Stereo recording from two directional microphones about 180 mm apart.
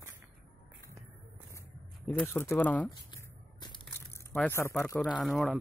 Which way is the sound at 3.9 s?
10° left (ahead or behind).